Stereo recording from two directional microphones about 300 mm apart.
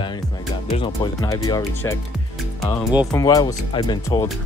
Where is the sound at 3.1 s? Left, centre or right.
Centre.